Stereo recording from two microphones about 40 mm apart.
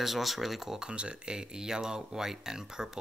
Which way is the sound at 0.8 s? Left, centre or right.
Right.